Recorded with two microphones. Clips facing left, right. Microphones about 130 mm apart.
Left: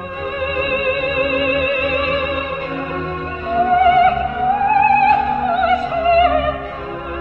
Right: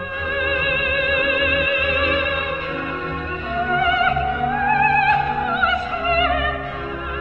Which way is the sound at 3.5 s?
40° left (ahead or behind).